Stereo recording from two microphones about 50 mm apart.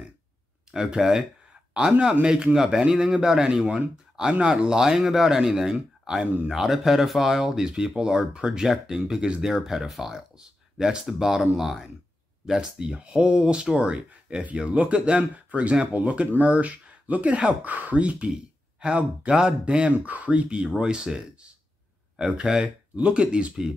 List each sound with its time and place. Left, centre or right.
0.7 s a man's voice: centre